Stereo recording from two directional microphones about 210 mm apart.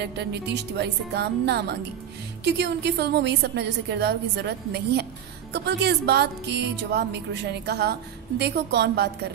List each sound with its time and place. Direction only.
0.0 s a woman's voice: 50° right (ahead or behind)